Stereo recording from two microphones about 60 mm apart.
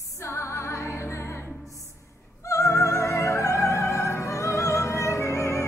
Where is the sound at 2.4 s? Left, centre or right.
Left.